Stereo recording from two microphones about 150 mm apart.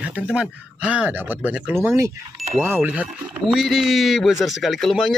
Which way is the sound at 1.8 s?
20° right (ahead or behind).